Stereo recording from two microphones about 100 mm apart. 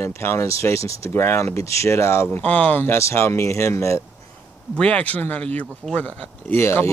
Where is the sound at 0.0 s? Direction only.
25° left (ahead or behind).